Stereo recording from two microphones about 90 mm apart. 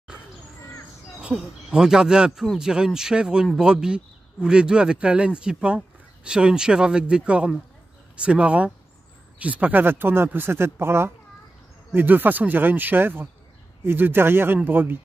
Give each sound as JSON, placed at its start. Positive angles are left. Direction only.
{"t": 1.2, "sound": "speech", "side_deg": -10}